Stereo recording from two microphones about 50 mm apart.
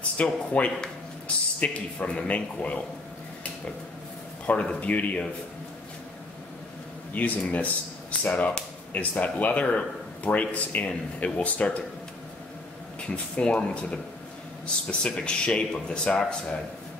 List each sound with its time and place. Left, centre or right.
0.2 s speech: left
4.7 s speech: left
7.2 s speech: left
13.1 s speech: left